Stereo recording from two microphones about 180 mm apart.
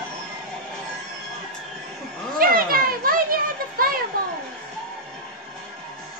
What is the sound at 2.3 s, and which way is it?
Children playing, 55° right (ahead or behind).